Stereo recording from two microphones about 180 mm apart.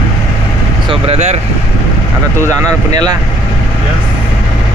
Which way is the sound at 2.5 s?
20° right (ahead or behind).